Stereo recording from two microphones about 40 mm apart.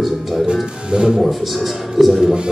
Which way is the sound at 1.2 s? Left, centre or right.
Centre.